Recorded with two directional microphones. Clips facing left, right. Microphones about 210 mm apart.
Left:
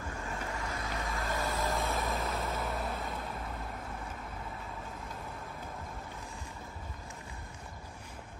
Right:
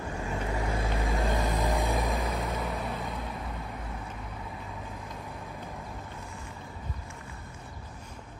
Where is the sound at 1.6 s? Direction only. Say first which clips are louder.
Right 4 dB; 15° right (ahead or behind).